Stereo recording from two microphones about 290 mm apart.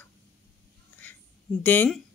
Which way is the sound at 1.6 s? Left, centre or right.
Centre.